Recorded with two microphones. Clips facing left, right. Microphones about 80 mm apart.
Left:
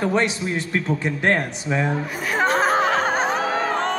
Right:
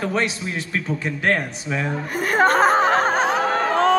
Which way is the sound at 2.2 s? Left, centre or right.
Right.